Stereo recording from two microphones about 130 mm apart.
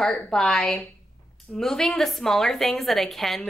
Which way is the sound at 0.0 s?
5° left (ahead or behind).